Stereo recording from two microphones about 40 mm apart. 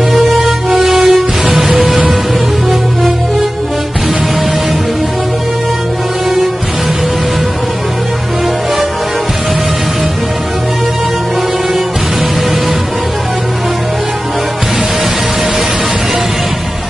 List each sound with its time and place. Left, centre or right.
0.1 s music: centre